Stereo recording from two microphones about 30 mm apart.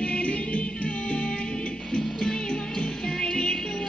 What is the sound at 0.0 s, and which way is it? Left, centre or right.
Music, left.